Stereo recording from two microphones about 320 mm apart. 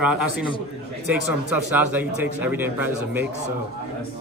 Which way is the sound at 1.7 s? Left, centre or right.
Centre.